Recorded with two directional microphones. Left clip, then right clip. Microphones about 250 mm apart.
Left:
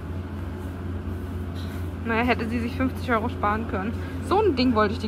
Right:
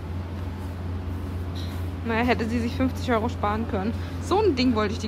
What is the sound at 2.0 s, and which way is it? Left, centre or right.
Speech, centre.